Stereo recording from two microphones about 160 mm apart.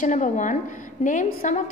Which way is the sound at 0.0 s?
50° left (ahead or behind).